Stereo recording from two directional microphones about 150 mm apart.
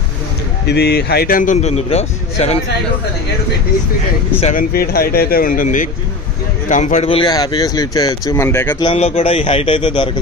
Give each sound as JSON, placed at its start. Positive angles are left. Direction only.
{"t": 0.7, "sound": "a man's voice", "side_deg": 90}
{"t": 4.6, "sound": "a man's voice", "side_deg": 90}
{"t": 7.1, "sound": "speech", "side_deg": 30}
{"t": 8.7, "sound": "speech", "side_deg": 35}